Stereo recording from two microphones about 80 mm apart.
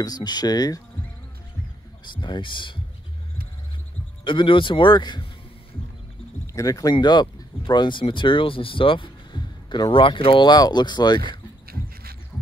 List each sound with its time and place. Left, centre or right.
0.0 s speech: left
2.1 s speech: left
4.2 s speech: left
6.4 s speech: left